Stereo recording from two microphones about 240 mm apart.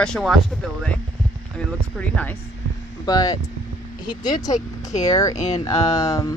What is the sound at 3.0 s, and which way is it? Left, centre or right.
Speech, centre.